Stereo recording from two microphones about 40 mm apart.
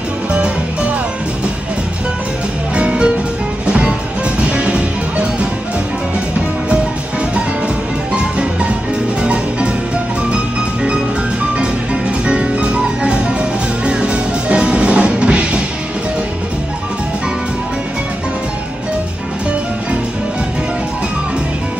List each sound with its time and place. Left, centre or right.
2.7 s music: right
8.1 s music: right